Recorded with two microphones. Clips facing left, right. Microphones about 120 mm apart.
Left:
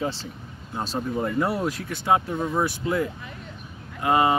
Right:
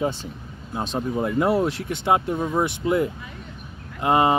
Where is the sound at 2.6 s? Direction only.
20° right (ahead or behind).